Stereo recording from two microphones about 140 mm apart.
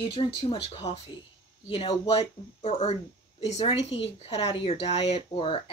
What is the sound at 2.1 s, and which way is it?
Speech, 45° left (ahead or behind).